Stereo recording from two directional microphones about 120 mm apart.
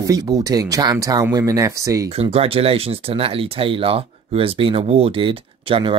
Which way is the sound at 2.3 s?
55° right (ahead or behind).